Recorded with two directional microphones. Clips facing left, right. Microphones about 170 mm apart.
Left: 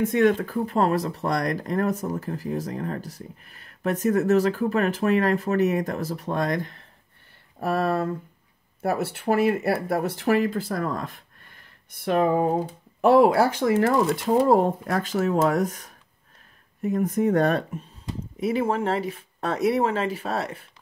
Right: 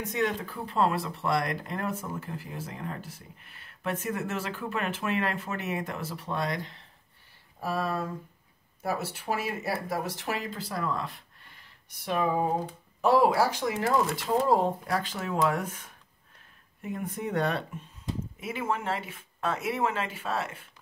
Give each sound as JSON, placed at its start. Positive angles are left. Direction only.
{"t": 0.0, "sound": "speech", "side_deg": 55}
{"t": 11.5, "sound": "a sound", "side_deg": 55}
{"t": 13.0, "sound": "speech", "side_deg": 60}
{"t": 18.4, "sound": "speech", "side_deg": 35}